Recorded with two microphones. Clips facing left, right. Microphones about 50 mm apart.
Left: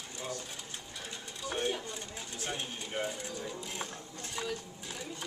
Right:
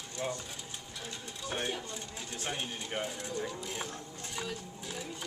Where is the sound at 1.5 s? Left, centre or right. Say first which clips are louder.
Left 2 dB; centre.